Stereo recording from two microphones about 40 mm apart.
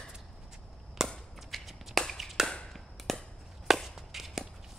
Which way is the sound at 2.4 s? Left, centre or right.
Centre.